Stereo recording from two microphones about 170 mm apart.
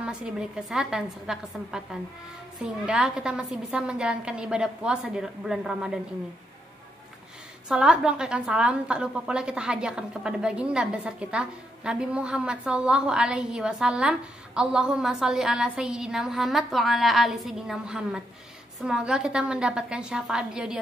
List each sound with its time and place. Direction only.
0.0 s a woman's voice: 5° right (ahead or behind)
7.6 s a woman's voice: 5° right (ahead or behind)